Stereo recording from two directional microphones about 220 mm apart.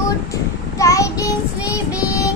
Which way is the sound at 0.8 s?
15° left (ahead or behind).